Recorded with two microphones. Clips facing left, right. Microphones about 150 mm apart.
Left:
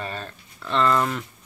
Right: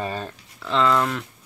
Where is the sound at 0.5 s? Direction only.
Centre (ahead or behind).